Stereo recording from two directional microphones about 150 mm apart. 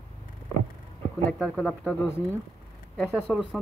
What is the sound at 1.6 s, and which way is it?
Speech, 5° left (ahead or behind).